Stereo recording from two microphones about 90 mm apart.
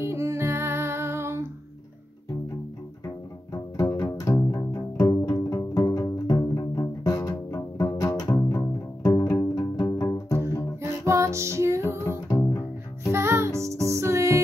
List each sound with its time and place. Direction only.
0.0 s music: 30° right (ahead or behind)
3.9 s music: 35° left (ahead or behind)
10.8 s music: 30° right (ahead or behind)
12.0 s music: 35° left (ahead or behind)
13.1 s music: 30° right (ahead or behind)